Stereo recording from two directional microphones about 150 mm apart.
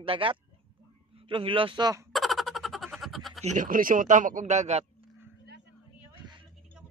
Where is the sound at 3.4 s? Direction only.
60° right (ahead or behind).